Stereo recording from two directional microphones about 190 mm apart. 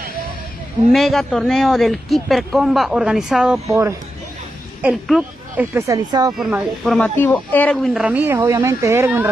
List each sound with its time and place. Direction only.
0.9 s a man's voice: centre (ahead or behind)
3.6 s speech: 15° right (ahead or behind)
5.0 s speech: centre (ahead or behind)
5.8 s speech: 20° right (ahead or behind)
6.3 s a man's voice: centre (ahead or behind)